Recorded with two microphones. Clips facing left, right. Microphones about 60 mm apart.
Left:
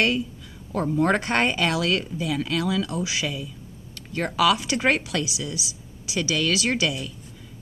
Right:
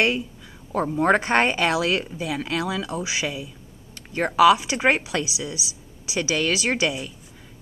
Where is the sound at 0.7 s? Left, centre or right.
Centre.